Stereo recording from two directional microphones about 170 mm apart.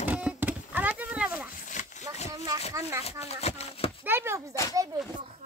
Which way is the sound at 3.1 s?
40° left (ahead or behind).